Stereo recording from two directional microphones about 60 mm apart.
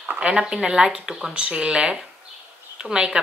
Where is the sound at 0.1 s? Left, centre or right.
Centre.